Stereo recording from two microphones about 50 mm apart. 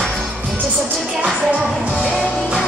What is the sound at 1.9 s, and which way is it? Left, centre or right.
Music, centre.